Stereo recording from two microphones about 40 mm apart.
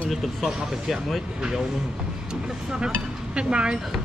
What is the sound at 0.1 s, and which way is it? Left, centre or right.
Speech, centre.